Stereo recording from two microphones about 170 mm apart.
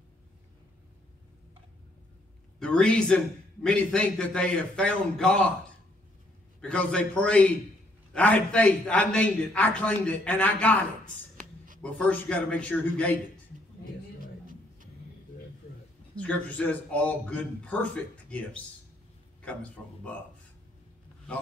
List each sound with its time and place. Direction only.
2.6 s a man's voice: 5° left (ahead or behind)
6.6 s a man's voice: 5° left (ahead or behind)
11.8 s a man's voice: 5° left (ahead or behind)
14.2 s a sound: 50° right (ahead or behind)
16.2 s a man's voice: 10° left (ahead or behind)